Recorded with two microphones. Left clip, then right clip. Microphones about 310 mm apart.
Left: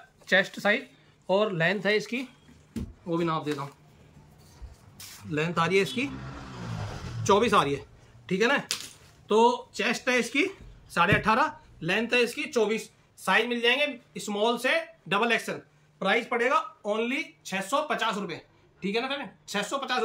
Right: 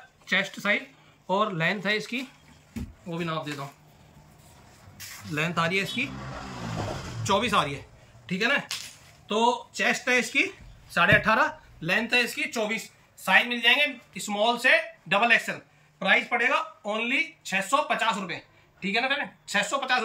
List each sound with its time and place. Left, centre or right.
0.3 s speech: centre
5.3 s speech: centre
7.2 s speech: centre